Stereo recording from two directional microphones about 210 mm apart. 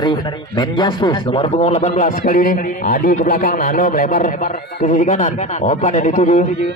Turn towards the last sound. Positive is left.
turn(degrees=35)  # may be behind; listen again after turning